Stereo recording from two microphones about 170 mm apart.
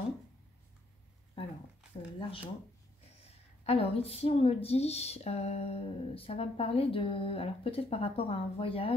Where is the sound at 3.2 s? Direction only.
35° left (ahead or behind).